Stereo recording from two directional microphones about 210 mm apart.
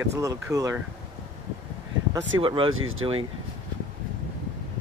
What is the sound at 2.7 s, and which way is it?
Speech, 75° right (ahead or behind).